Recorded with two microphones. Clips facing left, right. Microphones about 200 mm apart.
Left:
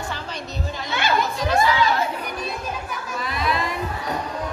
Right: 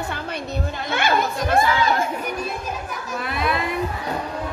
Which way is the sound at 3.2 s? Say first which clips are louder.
Right 1 dB; 55° right (ahead or behind).